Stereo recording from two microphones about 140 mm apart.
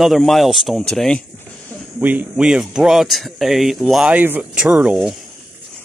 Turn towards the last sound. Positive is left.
turn(degrees=-5)  # may be behind; listen again after turning